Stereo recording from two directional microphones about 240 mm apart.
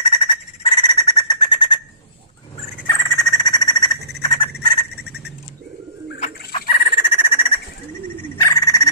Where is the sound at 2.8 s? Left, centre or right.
Centre.